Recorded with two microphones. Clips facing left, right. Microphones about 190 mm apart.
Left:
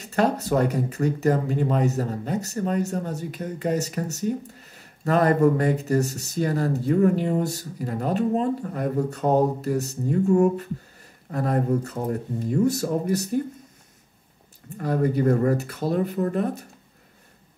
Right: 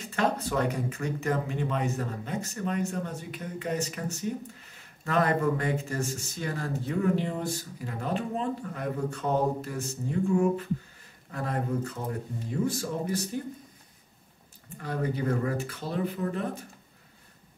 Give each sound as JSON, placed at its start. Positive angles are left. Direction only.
{"t": 0.0, "sound": "speech", "side_deg": 40}
{"t": 14.8, "sound": "speech", "side_deg": 45}